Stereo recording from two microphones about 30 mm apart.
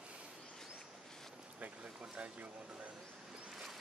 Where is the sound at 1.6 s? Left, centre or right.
Right.